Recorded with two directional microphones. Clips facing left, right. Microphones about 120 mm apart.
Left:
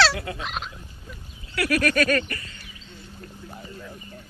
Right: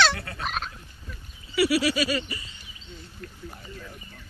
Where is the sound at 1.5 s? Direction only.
5° right (ahead or behind).